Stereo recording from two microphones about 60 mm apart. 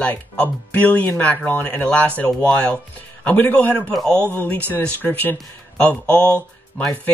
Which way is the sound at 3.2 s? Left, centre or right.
Left.